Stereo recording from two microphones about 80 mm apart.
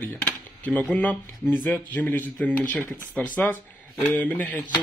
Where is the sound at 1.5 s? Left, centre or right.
Left.